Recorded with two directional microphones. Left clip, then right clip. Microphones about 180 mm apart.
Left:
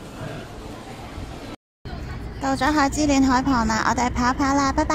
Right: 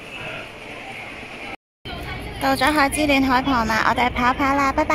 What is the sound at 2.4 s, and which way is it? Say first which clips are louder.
A woman's voice: right 3 dB; 10° left (ahead or behind).